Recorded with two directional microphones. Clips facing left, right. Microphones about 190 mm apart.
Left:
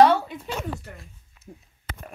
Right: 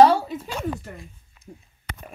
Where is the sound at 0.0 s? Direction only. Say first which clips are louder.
Right 2 dB; 35° right (ahead or behind).